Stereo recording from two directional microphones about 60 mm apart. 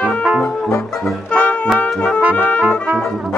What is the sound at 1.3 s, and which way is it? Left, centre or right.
Music, centre.